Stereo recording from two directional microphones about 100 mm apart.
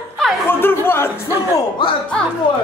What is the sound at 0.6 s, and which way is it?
Music, 25° left (ahead or behind).